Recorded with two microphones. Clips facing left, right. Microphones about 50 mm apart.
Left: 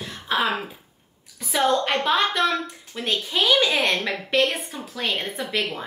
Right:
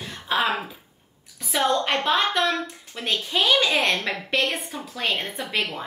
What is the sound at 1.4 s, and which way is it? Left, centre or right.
A woman's voice, centre.